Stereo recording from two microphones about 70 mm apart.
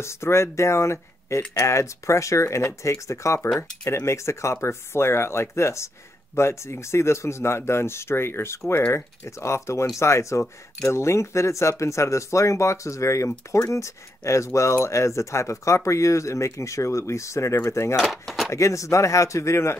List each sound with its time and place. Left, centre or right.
0.0 s speech: left
17.9 s speech: centre
18.5 s speech: left